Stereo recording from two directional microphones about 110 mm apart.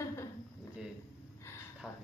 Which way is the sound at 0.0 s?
25° left (ahead or behind).